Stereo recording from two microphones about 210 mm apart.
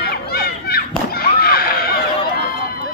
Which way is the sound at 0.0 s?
45° left (ahead or behind).